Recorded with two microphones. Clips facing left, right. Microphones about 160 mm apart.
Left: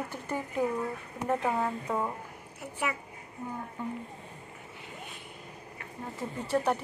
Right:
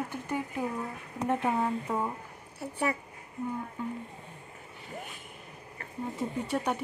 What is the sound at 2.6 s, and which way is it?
Speech, 35° right (ahead or behind).